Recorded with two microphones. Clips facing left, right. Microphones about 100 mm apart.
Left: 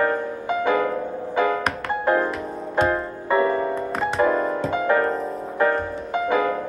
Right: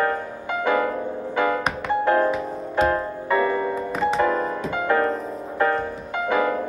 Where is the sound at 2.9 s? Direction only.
25° left (ahead or behind).